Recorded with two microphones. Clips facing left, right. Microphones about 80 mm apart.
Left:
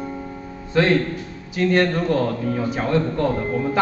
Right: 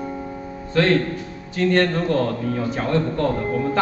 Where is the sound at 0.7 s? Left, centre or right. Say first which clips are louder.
Even; centre.